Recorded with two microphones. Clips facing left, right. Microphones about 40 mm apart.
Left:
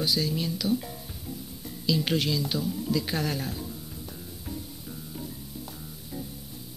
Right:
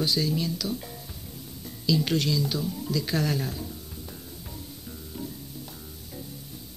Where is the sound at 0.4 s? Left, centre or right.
Centre.